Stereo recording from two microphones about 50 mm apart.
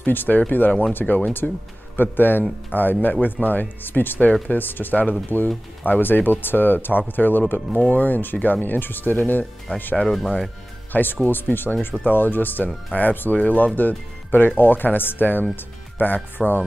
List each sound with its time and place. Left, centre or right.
0.0 s speech: left
1.4 s speech: centre
2.0 s speech: left
10.9 s speech: left
15.5 s music: left
16.3 s speech: left